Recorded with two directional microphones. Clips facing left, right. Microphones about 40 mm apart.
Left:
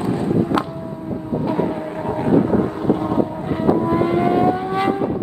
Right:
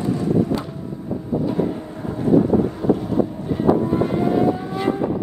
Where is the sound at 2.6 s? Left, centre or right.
Left.